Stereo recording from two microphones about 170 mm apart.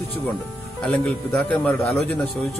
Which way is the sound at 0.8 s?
5° left (ahead or behind).